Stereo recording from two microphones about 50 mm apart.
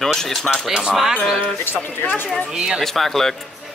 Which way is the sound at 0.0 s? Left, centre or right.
Centre.